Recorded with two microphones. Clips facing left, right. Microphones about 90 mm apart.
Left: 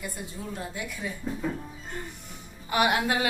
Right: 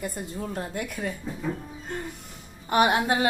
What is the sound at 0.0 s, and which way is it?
A woman's voice, 45° right (ahead or behind).